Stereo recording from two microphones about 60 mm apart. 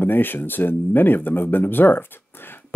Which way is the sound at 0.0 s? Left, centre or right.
Left.